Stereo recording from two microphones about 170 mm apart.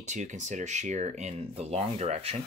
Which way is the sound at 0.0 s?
45° right (ahead or behind).